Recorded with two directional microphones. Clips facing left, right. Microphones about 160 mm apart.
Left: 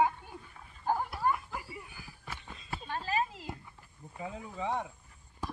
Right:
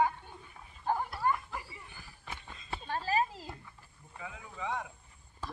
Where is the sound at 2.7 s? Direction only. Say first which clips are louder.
Right 2 dB; 35° right (ahead or behind).